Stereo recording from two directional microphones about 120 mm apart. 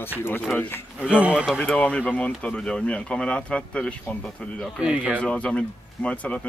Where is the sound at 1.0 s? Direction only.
10° right (ahead or behind).